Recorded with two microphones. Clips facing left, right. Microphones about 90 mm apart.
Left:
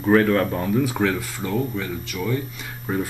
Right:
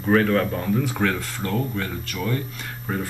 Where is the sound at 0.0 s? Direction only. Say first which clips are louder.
Left 2 dB; 5° left (ahead or behind).